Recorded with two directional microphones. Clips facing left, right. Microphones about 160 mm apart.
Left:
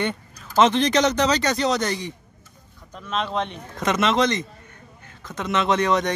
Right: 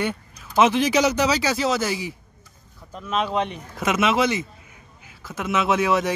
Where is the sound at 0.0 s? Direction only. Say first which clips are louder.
Even; 5° right (ahead or behind).